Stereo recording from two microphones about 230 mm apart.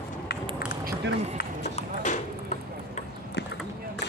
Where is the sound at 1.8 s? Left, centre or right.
Left.